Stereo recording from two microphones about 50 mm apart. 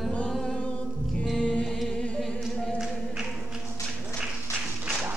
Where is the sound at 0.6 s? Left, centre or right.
Left.